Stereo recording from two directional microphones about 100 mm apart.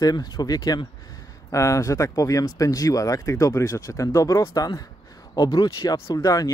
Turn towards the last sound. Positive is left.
turn(degrees=35)  # may be behind; listen again after turning